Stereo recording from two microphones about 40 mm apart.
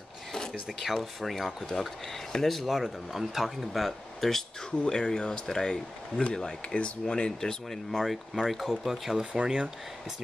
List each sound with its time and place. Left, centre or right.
0.5 s speech: centre
4.6 s speech: left
6.7 s speech: left
7.3 s speech: centre
8.0 s speech: centre
9.2 s speech: right